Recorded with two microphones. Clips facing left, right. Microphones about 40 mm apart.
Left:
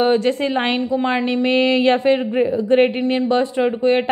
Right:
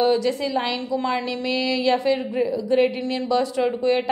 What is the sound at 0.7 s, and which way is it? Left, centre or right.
A woman's voice, left.